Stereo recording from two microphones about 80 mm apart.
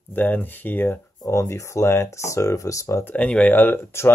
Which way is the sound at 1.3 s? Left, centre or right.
Left.